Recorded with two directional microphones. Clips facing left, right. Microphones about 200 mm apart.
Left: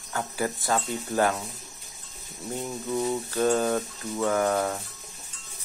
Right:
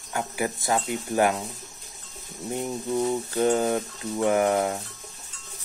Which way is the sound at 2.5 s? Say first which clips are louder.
Right 3 dB; 20° right (ahead or behind).